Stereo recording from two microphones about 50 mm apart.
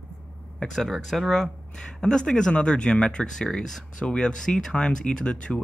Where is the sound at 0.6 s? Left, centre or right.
Centre.